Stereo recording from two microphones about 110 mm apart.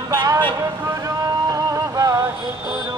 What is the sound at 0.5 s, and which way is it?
Vehicle, 30° right (ahead or behind).